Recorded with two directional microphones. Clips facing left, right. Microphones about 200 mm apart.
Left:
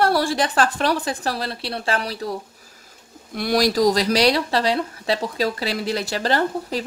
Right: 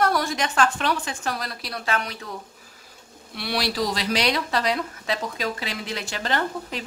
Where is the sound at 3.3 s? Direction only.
45° left (ahead or behind).